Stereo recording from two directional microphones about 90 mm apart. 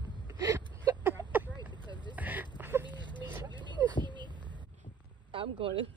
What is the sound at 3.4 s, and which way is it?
Vehicle, 60° right (ahead or behind).